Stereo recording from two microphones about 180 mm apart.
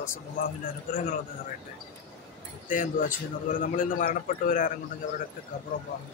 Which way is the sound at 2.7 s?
50° left (ahead or behind).